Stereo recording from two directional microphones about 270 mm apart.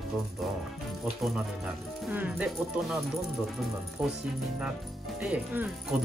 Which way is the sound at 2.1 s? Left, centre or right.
Centre.